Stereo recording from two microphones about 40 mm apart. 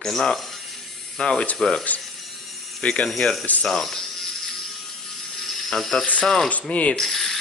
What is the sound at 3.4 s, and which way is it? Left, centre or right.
Mechanisms, left.